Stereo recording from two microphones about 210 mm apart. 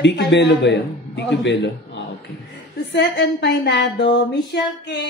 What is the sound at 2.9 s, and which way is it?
Mantra, 55° left (ahead or behind).